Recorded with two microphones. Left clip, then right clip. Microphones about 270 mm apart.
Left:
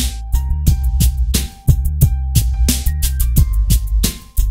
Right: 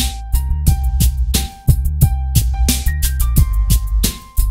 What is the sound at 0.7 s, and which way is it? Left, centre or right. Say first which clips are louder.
Music: even; centre.